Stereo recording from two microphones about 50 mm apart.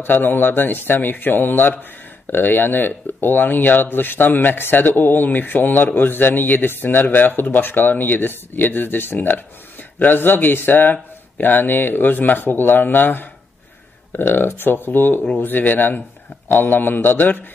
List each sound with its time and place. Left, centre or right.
0.0 s speech: left